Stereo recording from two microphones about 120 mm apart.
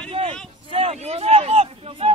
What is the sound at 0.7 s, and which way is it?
Speech, 60° right (ahead or behind).